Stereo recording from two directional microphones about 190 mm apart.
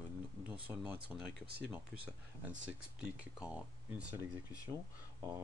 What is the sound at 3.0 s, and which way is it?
Speech, 5° right (ahead or behind).